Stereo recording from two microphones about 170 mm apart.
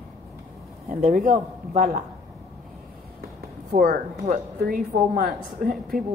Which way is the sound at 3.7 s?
60° right (ahead or behind).